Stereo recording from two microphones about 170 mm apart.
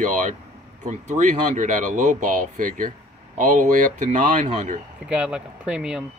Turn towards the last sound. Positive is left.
turn(degrees=-5)  # may be behind; listen again after turning